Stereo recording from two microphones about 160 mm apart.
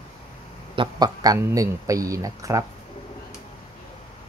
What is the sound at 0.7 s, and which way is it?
Speech, 30° right (ahead or behind).